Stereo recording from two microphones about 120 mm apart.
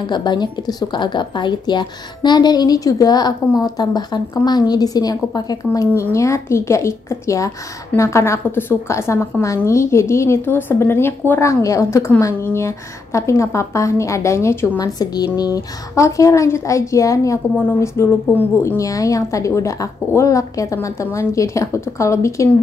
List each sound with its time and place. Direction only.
0.0 s a woman's voice: 40° left (ahead or behind); by 14.9 s 20° left (ahead or behind)
15.0 s a woman's voice: 35° left (ahead or behind); by 18.8 s 15° left (ahead or behind)
18.8 s a woman's voice: 30° left (ahead or behind)